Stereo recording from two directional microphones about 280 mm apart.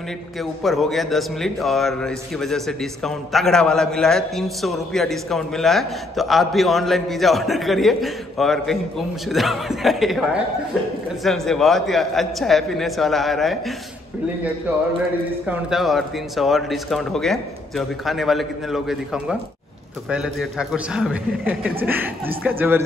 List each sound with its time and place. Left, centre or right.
0.4 s a man's voice: centre
15.4 s a man's voice: centre